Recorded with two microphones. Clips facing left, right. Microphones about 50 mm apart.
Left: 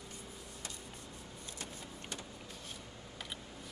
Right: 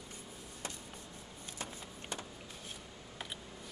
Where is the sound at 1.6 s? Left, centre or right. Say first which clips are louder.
Right 3 dB; right.